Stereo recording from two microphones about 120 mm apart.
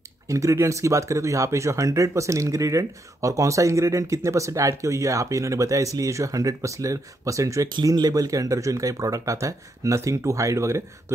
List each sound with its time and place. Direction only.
0.3 s speech: 25° right (ahead or behind)